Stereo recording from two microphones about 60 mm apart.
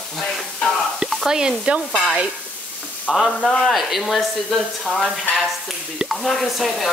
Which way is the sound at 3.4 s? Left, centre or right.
Centre.